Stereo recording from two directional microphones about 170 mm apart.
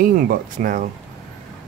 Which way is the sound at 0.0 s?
55° right (ahead or behind).